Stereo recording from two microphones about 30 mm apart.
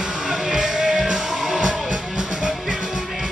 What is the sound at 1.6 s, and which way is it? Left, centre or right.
Music, right.